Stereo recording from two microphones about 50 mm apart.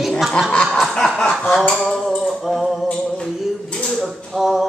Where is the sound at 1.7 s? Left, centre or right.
Centre.